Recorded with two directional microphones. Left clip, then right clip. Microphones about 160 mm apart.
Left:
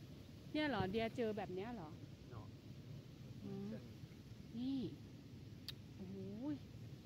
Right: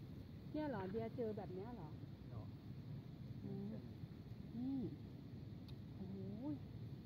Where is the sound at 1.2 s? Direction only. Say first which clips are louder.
Left 4 dB; 50° left (ahead or behind).